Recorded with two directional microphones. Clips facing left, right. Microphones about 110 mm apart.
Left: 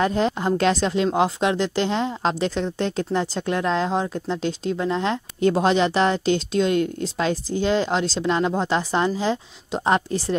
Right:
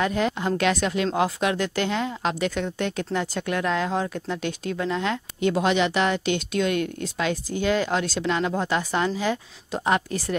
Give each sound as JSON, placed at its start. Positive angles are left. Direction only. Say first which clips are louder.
{"t": 0.0, "sound": "speech", "louder": "left 3 dB", "side_deg": 30}